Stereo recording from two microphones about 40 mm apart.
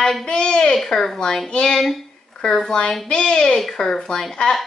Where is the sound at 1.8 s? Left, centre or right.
Centre.